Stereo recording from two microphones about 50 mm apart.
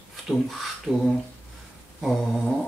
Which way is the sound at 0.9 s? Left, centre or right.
Centre.